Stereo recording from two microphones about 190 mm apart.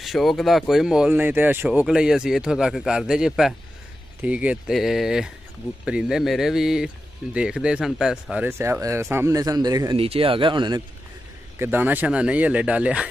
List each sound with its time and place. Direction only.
0.0 s speech: centre (ahead or behind); by 9.9 s 20° right (ahead or behind)
9.9 s speech: 30° right (ahead or behind)
11.5 s speech: 10° right (ahead or behind)